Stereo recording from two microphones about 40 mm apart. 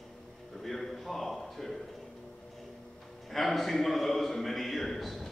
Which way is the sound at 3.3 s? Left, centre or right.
Centre.